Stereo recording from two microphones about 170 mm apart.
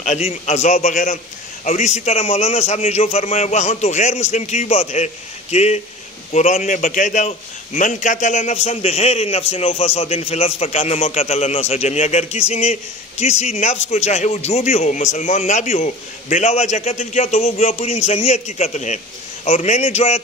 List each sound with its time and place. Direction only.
0.0 s a man's voice: 40° left (ahead or behind)